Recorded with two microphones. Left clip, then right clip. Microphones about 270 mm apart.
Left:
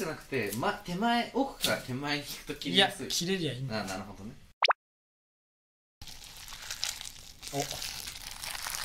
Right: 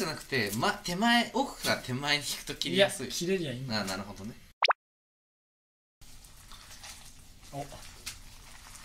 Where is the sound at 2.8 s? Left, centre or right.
Centre.